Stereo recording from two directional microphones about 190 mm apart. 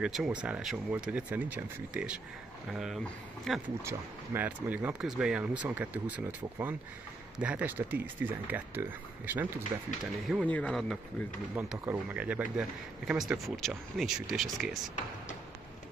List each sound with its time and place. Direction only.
0.0 s speech: 5° right (ahead or behind)
3.8 s speech: 10° right (ahead or behind)
9.7 s speech: 20° right (ahead or behind)
10.3 s speech: 5° left (ahead or behind)
11.5 s speech: 10° right (ahead or behind)